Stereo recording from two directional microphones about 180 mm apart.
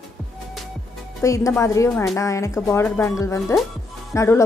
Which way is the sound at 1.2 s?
15° left (ahead or behind).